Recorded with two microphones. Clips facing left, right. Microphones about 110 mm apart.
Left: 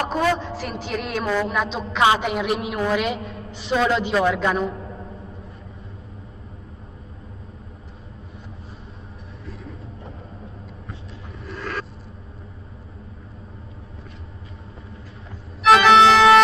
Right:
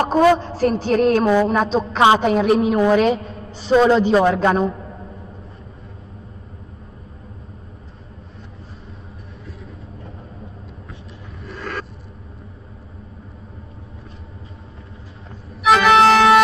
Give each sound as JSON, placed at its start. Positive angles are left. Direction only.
{"t": 0.1, "sound": "a man's voice", "side_deg": -35}
{"t": 1.2, "sound": "a woman's voice", "side_deg": -15}
{"t": 1.5, "sound": "a man's voice", "side_deg": -35}
{"t": 15.6, "sound": "organ", "side_deg": 0}